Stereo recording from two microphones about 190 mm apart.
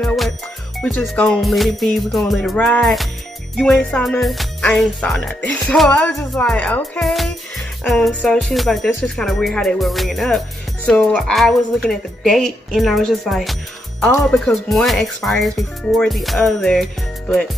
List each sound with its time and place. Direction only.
0.0 s music: centre (ahead or behind)